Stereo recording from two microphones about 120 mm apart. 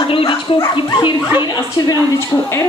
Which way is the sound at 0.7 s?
40° left (ahead or behind).